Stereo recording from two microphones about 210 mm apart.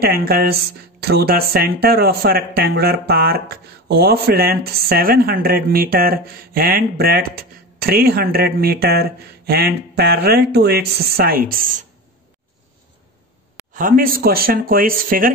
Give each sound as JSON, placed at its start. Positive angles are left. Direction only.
{"t": 0.0, "sound": "speech", "side_deg": -45}
{"t": 13.7, "sound": "speech", "side_deg": -40}